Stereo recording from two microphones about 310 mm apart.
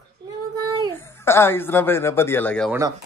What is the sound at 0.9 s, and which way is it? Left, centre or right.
Speech, centre.